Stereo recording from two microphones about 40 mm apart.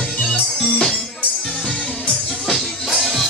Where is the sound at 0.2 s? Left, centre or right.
Left.